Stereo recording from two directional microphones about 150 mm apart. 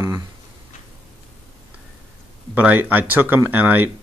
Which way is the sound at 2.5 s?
10° right (ahead or behind).